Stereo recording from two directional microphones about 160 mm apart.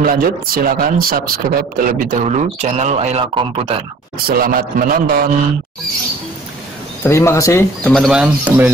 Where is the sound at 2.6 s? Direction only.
45° right (ahead or behind).